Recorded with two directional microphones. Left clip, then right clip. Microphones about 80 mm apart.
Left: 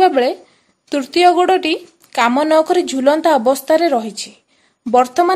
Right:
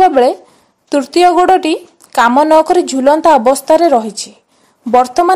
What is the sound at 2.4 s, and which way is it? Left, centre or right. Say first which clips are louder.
A woman's voice: right 5 dB; right.